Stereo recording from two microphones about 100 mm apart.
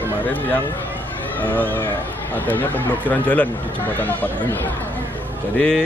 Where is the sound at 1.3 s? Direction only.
15° left (ahead or behind).